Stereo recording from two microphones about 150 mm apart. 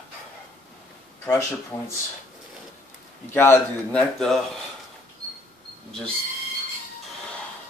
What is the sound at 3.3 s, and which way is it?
Speech, 15° left (ahead or behind).